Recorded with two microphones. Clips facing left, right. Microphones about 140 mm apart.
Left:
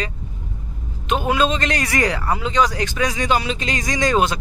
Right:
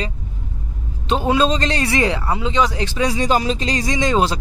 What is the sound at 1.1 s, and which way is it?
A man's voice, 30° right (ahead or behind).